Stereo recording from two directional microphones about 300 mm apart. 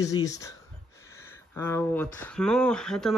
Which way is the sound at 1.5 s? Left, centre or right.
Centre.